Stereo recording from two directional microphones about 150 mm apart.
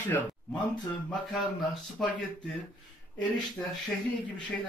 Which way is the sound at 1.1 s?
Centre (ahead or behind).